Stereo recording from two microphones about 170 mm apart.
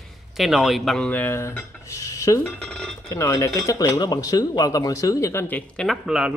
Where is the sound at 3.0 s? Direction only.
15° left (ahead or behind); by 6.3 s 5° right (ahead or behind).